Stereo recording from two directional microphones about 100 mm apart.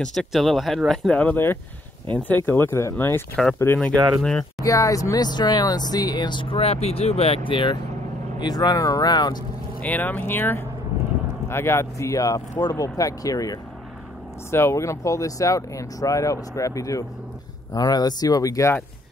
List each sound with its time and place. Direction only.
0.0 s speech: 5° left (ahead or behind)
1.1 s speech: 15° left (ahead or behind)
3.9 s speech: 35° right (ahead or behind)
4.6 s speech: 35° left (ahead or behind); by 7.7 s 60° left (ahead or behind)
8.4 s speech: 40° left (ahead or behind)
9.8 s speech: 15° left (ahead or behind); by 18.8 s 35° left (ahead or behind)